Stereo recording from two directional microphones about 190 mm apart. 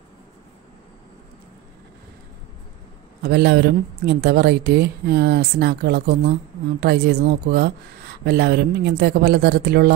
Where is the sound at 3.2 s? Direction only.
60° right (ahead or behind).